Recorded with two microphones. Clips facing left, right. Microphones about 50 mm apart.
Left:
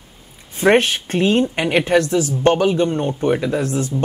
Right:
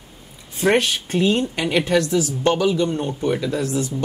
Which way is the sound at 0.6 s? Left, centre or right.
Left.